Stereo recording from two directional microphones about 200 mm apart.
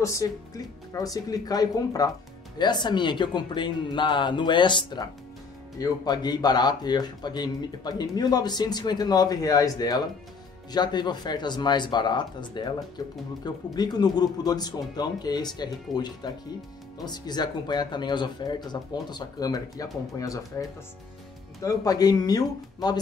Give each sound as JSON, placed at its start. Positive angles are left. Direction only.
{"t": 0.0, "sound": "speech", "side_deg": 15}
{"t": 21.6, "sound": "speech", "side_deg": 20}